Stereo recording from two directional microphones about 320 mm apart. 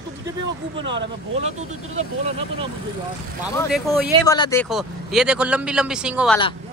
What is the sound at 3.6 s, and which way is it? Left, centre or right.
Speech, centre.